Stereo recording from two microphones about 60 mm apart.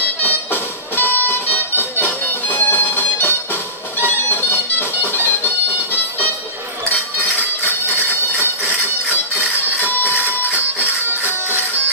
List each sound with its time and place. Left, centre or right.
0.2 s music: left
9.4 s music: left